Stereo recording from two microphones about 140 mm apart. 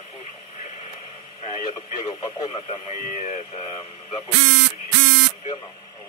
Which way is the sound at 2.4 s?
45° left (ahead or behind).